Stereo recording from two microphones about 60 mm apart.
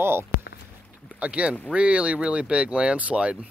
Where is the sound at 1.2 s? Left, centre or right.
Right.